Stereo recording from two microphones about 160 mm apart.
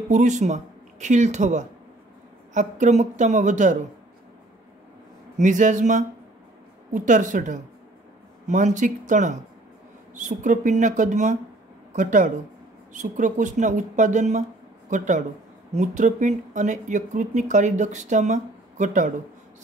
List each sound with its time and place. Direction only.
0.1 s speech: 50° right (ahead or behind)
5.4 s speech: 50° right (ahead or behind)